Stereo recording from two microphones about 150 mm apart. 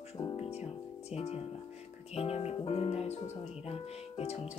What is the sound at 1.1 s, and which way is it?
Speech, 45° left (ahead or behind).